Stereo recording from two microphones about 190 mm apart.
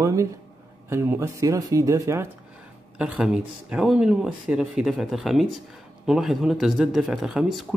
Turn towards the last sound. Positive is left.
turn(degrees=-5)  # may be behind; listen again after turning